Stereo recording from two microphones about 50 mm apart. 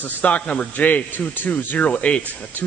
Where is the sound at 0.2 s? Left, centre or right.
Left.